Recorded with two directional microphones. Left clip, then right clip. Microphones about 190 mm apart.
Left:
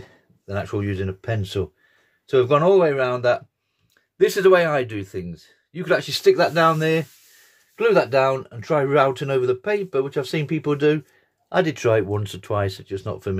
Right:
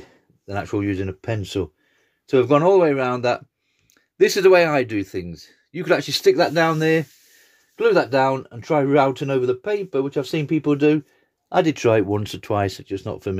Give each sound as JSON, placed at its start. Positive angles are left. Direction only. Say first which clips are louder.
{"t": 0.5, "sound": "speech", "louder": "right 2 dB", "side_deg": -30}